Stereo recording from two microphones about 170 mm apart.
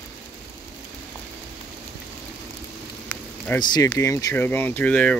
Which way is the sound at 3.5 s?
25° left (ahead or behind).